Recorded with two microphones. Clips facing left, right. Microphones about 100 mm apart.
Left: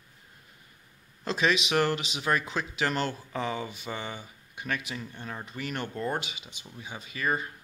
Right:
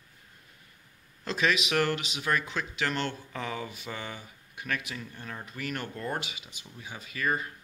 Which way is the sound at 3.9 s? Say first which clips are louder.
Left 2 dB; 25° left (ahead or behind).